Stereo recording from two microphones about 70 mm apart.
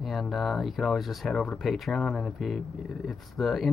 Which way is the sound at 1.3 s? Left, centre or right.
Centre.